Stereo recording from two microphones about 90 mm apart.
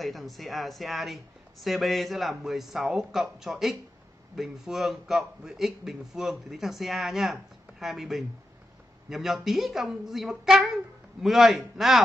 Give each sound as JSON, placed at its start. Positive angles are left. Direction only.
{"t": 0.0, "sound": "speech", "side_deg": 0}